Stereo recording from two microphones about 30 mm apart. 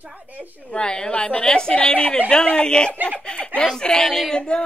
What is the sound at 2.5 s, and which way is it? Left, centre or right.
Speech, left.